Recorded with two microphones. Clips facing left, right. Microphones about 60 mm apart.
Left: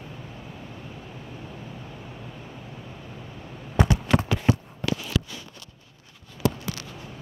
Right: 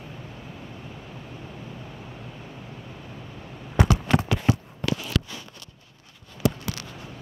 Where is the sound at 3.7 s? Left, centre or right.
Right.